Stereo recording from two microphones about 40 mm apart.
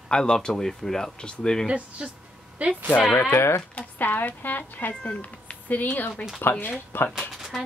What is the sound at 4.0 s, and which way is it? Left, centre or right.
Speech, left.